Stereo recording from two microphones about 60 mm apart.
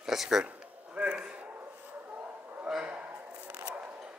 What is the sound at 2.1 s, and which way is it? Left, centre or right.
Bow-wow, right.